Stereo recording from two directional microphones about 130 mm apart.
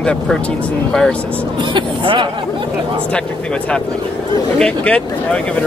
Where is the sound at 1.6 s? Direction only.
40° right (ahead or behind).